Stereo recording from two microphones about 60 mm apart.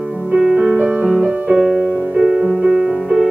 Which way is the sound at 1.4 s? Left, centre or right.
Centre.